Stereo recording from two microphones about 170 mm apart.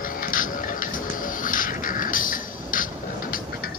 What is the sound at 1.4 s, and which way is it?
Music, 55° left (ahead or behind).